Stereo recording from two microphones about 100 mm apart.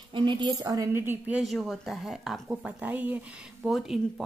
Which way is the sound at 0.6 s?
35° right (ahead or behind).